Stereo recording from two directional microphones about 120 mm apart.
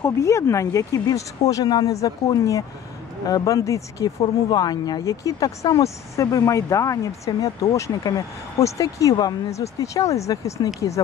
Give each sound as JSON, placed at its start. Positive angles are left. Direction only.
{"t": 0.0, "sound": "speech", "side_deg": 25}